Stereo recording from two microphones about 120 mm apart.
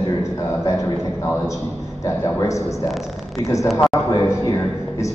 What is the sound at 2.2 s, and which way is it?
A man's voice, 25° left (ahead or behind).